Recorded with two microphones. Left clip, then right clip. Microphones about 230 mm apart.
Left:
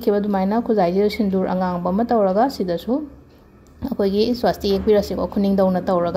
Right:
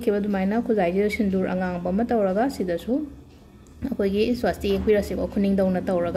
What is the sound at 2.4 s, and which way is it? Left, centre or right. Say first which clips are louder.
Speech: left 4 dB; centre.